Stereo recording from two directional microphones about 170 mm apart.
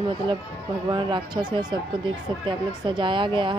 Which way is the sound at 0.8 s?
25° right (ahead or behind).